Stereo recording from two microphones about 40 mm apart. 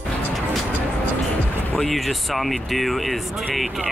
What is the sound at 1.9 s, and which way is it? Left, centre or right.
Speech, centre.